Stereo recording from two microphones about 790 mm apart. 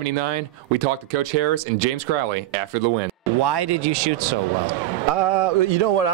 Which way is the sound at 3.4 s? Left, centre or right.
Right.